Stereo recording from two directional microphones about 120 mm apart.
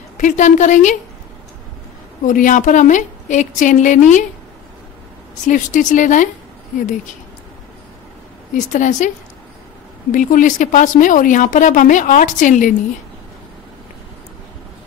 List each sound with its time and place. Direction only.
0.2 s speech: 90° left
2.2 s speech: 90° left
5.5 s speech: 90° left
8.7 s speech: 90° left
10.1 s speech: 90° left